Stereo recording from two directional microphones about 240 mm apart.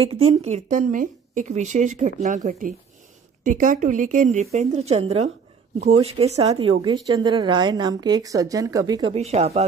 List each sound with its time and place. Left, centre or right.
0.0 s a woman's voice: right